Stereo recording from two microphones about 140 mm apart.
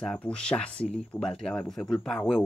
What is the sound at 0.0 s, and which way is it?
Speech, 5° left (ahead or behind).